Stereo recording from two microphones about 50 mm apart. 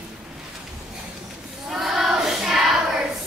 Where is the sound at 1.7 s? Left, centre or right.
Centre.